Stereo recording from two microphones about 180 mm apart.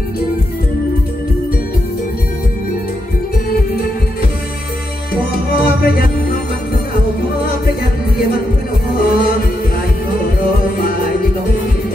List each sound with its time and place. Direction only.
5.1 s music: 55° left (ahead or behind)
9.0 s music: 55° left (ahead or behind)
10.8 s music: 55° left (ahead or behind)